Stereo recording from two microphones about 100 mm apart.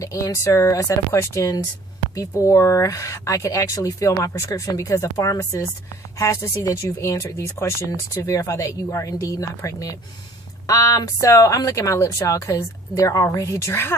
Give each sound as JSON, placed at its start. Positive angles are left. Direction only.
{"t": 0.0, "sound": "speech", "side_deg": 35}